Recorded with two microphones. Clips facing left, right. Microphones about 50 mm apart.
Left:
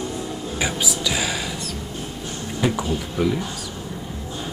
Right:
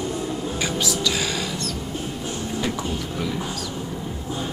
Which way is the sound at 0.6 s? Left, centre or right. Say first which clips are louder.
Left 1 dB; centre.